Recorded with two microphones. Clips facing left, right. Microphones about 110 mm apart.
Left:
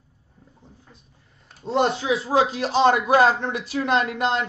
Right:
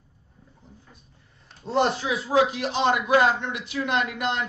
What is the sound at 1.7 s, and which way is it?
A man's voice, 25° left (ahead or behind).